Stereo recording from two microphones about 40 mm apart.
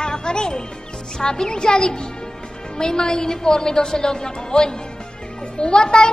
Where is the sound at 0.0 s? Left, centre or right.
Centre.